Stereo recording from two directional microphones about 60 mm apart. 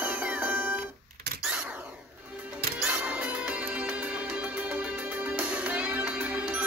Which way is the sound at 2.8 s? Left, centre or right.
Right.